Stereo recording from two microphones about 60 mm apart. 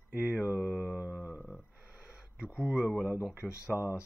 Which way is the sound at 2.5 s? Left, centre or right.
Centre.